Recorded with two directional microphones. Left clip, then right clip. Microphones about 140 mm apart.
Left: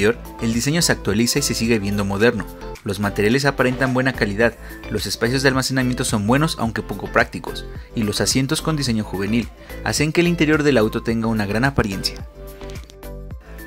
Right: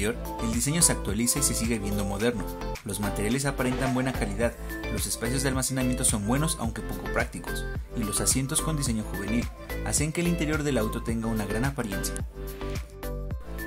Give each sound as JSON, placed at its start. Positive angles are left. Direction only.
{"t": 0.0, "sound": "speech", "side_deg": 35}